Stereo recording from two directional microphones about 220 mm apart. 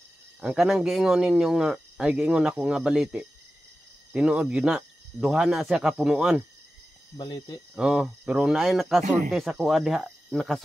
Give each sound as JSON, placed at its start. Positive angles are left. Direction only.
{"t": 0.4, "sound": "speech", "side_deg": -5}
{"t": 7.2, "sound": "speech", "side_deg": 20}
{"t": 7.7, "sound": "speech", "side_deg": -5}